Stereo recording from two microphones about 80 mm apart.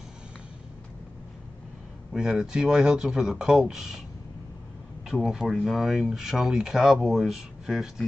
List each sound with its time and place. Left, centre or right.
2.1 s speech: centre
5.2 s speech: centre